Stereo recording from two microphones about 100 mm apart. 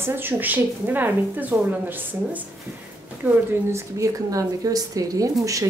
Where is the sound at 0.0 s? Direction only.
20° right (ahead or behind).